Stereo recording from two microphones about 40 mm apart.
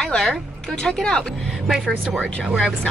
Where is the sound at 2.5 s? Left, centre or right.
Left.